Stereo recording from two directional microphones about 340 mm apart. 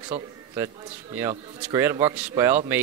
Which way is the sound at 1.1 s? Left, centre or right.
Centre.